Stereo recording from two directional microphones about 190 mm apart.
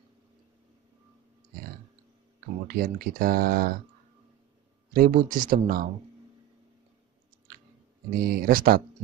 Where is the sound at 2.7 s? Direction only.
50° right (ahead or behind).